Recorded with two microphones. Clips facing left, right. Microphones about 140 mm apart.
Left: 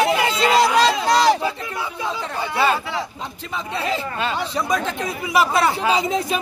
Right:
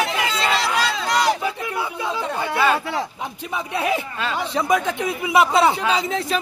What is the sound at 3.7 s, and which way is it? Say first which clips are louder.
Speech: right 2 dB; 10° right (ahead or behind).